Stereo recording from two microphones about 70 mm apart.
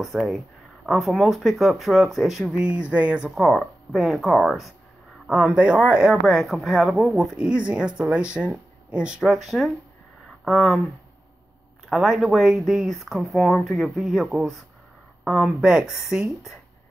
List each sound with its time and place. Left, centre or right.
0.0 s speech: centre
2.4 s speech: centre
3.3 s speech: centre
5.6 s speech: centre
6.0 s speech: centre
9.2 s speech: centre
11.9 s speech: centre